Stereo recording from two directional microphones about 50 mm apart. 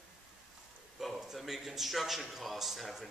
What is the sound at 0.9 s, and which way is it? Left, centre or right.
A man's voice, centre.